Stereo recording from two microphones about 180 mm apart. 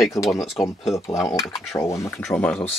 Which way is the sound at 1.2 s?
15° left (ahead or behind).